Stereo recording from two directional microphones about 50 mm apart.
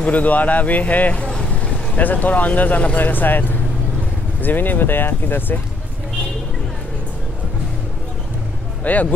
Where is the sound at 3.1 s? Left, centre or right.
Left.